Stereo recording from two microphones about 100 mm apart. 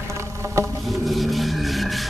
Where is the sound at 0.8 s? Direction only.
Centre (ahead or behind).